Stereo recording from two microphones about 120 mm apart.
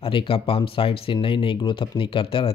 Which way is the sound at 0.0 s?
45° left (ahead or behind).